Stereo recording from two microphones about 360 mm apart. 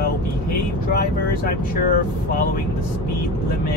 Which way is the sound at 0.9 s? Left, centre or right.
Left.